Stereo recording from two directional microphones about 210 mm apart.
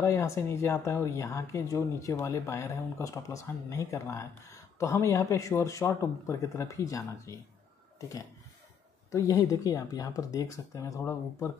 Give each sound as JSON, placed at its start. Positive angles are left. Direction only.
{"t": 0.0, "sound": "speech", "side_deg": 15}
{"t": 9.1, "sound": "speech", "side_deg": 15}